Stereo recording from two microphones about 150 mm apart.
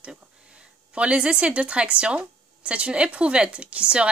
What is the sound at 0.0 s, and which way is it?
A woman's voice, 5° right (ahead or behind).